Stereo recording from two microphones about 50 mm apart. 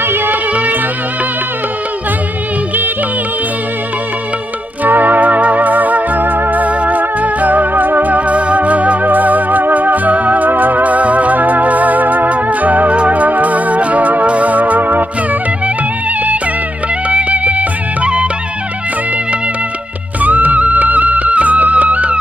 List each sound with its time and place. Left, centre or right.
0.0 s music: right
0.5 s music: right
4.8 s music: right
17.1 s music: right
20.2 s music: right